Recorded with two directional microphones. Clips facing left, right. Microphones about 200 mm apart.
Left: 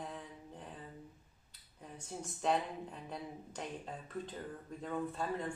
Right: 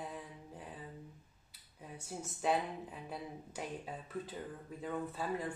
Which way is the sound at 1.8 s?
5° right (ahead or behind).